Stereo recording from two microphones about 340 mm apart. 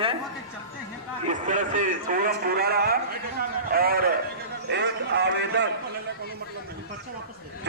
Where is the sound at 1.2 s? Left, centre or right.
Right.